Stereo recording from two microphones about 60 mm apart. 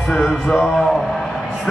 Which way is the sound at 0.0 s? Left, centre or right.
Centre.